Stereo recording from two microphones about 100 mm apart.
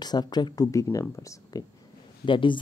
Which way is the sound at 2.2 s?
55° left (ahead or behind).